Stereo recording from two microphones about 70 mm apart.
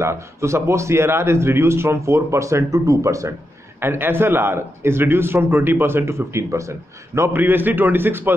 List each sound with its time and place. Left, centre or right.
0.0 s a man's voice: right
3.8 s a man's voice: right
7.3 s a man's voice: right